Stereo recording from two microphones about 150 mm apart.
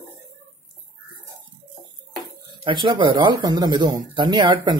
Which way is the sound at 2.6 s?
30° right (ahead or behind).